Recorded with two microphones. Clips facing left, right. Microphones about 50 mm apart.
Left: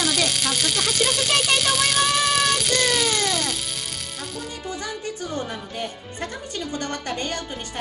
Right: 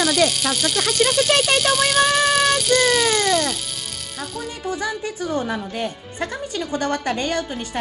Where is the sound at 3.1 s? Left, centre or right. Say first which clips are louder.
Right 5 dB; right.